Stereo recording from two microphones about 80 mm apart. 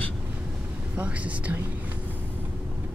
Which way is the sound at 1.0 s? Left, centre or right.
Centre.